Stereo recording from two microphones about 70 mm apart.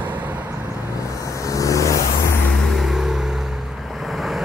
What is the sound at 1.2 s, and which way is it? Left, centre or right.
Vehicle, left.